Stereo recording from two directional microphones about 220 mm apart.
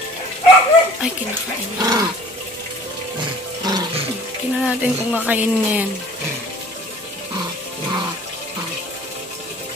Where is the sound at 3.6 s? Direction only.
20° right (ahead or behind).